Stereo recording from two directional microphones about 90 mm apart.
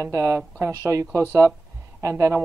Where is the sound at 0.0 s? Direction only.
35° right (ahead or behind).